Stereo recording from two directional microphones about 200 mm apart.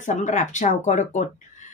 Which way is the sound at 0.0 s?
35° left (ahead or behind).